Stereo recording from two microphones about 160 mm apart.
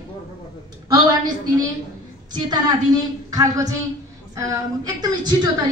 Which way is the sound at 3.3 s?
20° right (ahead or behind).